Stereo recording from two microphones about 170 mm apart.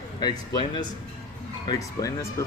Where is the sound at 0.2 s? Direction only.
25° left (ahead or behind).